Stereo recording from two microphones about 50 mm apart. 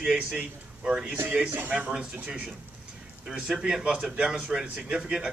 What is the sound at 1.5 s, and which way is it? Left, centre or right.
Speech, right.